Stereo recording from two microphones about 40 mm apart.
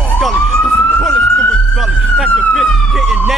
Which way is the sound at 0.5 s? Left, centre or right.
Centre.